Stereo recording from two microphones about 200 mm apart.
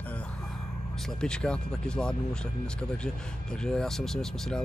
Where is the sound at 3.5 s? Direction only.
5° left (ahead or behind).